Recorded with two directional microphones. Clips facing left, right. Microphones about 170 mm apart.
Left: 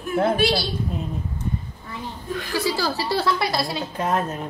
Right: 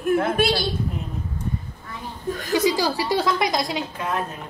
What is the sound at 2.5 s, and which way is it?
A woman's voice, 20° right (ahead or behind).